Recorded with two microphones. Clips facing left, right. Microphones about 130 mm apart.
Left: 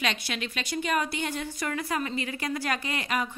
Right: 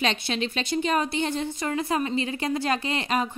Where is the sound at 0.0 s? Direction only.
30° right (ahead or behind).